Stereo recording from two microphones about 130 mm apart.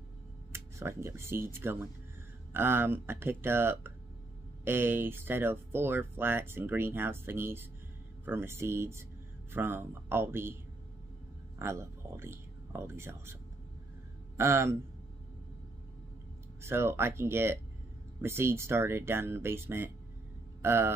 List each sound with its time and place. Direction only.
0.5 s speech: 20° right (ahead or behind)
11.5 s speech: 20° right (ahead or behind)
16.6 s speech: 20° right (ahead or behind)